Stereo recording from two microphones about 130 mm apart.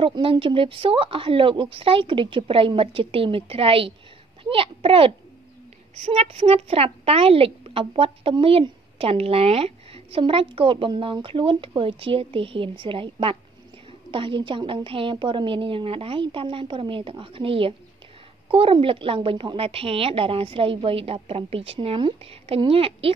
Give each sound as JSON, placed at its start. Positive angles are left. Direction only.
{"t": 0.0, "sound": "a woman's voice", "side_deg": -40}